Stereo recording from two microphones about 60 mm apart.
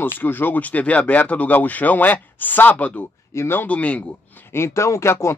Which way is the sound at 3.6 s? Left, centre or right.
Left.